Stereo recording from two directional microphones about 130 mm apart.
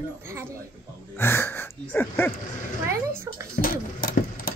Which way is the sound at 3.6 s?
90° left.